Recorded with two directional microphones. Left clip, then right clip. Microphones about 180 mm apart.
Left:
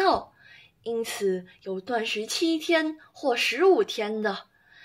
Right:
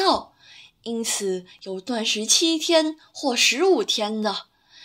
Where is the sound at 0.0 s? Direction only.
25° right (ahead or behind).